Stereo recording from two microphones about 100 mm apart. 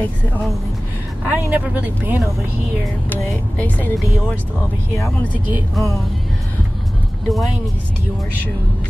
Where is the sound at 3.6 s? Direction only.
15° left (ahead or behind).